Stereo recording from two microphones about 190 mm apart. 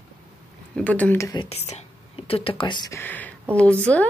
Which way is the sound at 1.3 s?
30° left (ahead or behind).